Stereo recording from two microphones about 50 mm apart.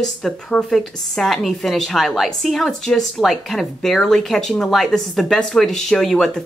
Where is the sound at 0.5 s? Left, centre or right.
Left.